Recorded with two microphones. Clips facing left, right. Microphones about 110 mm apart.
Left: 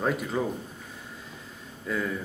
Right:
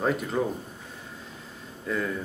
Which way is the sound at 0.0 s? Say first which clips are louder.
Right 1 dB; centre (ahead or behind).